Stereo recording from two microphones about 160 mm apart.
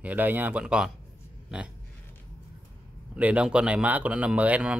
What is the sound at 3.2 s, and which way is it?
Speech, 10° right (ahead or behind).